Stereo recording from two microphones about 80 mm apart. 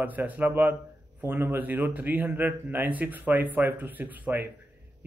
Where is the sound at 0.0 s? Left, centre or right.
Right.